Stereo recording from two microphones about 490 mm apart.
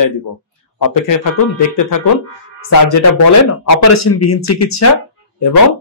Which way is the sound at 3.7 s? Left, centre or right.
Left.